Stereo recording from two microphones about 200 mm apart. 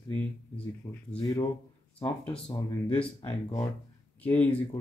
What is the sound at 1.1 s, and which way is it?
Speech, 20° left (ahead or behind).